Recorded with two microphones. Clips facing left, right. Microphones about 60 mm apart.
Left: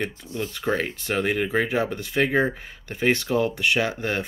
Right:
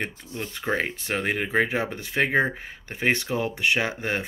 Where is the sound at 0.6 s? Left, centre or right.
Right.